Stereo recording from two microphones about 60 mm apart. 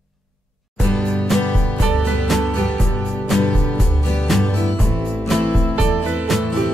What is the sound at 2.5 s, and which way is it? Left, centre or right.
Music, centre.